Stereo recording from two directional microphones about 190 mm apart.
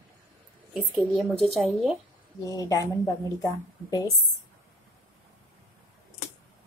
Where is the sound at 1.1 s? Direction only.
Centre (ahead or behind).